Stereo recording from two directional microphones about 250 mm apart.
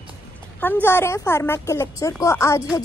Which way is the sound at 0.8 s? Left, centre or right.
Centre.